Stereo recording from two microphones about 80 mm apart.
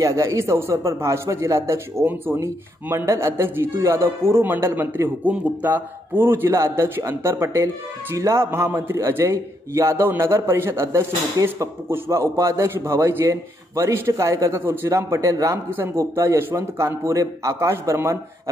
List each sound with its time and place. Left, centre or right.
0.0 s speech: right
2.0 s speech: right
14.6 s speech: right
14.9 s speech: right